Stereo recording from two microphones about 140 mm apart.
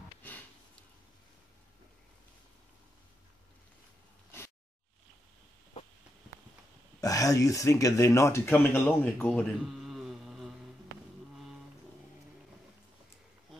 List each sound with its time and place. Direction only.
7.0 s speech: 25° left (ahead or behind); by 10.5 s centre (ahead or behind)